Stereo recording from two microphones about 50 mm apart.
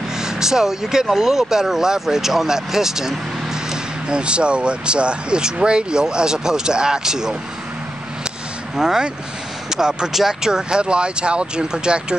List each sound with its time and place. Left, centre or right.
0.2 s speech: centre
8.7 s speech: centre